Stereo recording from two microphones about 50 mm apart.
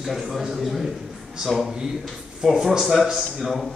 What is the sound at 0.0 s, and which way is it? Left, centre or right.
A man's voice, centre.